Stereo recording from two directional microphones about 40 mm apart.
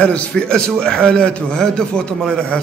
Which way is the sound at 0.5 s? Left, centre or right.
Centre.